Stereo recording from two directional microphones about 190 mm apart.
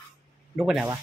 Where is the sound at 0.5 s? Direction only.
Centre (ahead or behind).